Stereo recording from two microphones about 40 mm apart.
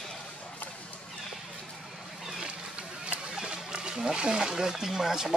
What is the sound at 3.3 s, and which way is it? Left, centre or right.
Speech, right.